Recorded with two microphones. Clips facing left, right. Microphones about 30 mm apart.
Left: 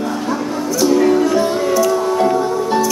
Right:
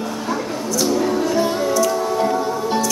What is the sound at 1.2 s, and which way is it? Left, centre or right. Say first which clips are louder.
Music: left 4 dB; centre.